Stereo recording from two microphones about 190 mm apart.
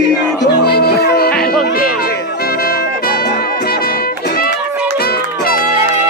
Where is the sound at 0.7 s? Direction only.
55° left (ahead or behind).